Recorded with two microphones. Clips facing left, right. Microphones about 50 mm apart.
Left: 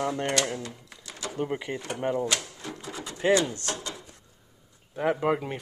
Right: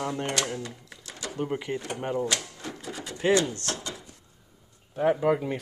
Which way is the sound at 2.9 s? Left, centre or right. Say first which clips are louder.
Even; centre.